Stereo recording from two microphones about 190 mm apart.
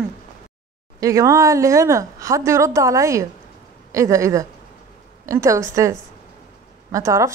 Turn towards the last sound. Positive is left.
turn(degrees=-15)  # may be behind; listen again after turning